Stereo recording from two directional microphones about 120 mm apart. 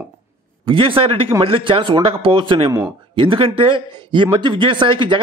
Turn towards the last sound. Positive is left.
turn(degrees=-45)  # may be behind; listen again after turning